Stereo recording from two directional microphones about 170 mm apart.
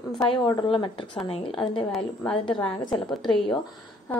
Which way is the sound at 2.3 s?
30° left (ahead or behind).